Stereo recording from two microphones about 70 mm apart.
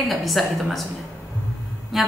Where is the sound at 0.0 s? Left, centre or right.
Centre.